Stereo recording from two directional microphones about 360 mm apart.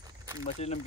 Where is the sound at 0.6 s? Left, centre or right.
Centre.